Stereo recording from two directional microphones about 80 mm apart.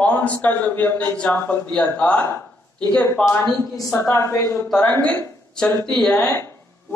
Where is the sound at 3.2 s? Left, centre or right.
Left.